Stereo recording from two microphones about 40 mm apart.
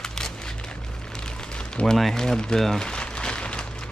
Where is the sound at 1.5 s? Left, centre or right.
Left.